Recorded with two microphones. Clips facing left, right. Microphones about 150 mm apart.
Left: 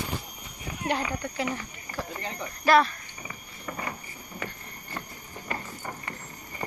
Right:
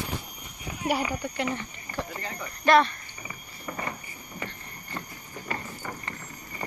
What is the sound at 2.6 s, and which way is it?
Speech, centre (ahead or behind).